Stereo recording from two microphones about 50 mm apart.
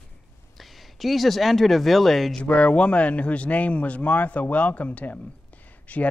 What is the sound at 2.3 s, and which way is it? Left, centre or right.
A man's voice, left.